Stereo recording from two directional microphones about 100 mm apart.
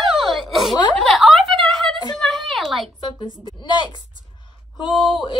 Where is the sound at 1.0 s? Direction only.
5° left (ahead or behind).